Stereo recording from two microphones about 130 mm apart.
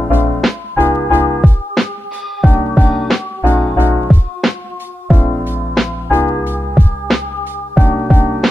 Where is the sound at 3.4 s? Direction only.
15° left (ahead or behind).